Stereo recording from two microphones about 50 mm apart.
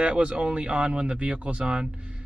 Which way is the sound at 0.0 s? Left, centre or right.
Right.